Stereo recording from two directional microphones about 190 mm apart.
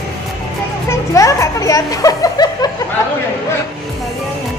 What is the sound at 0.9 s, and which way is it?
Speech, 15° left (ahead or behind).